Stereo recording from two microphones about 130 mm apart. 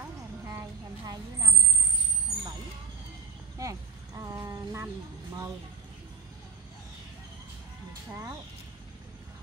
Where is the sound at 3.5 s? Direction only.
25° right (ahead or behind).